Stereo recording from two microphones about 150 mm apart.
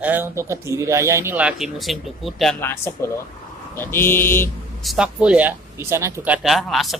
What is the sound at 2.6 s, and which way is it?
Speech, 15° left (ahead or behind).